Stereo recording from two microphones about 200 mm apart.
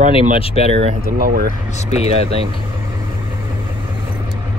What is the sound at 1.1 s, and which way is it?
Speech, 50° right (ahead or behind).